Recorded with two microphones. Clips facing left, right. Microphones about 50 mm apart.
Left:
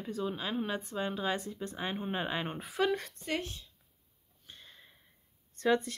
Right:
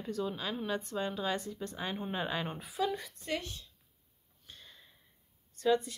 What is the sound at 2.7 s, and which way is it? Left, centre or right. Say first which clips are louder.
Speech: left 3 dB; left.